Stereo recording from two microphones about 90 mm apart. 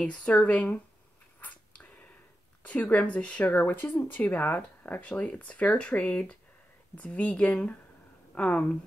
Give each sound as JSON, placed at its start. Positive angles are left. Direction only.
{"t": 0.0, "sound": "speech", "side_deg": 15}
{"t": 1.4, "sound": "a sound", "side_deg": 15}
{"t": 2.6, "sound": "speech", "side_deg": 15}